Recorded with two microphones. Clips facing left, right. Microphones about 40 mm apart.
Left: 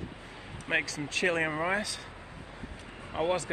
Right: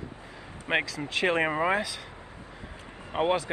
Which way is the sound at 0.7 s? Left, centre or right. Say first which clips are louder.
Right 2 dB; right.